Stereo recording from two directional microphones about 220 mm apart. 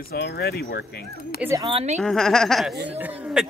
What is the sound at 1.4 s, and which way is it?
Speech, 10° right (ahead or behind).